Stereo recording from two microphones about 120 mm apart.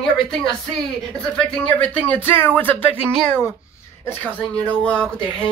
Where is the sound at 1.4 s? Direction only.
5° left (ahead or behind).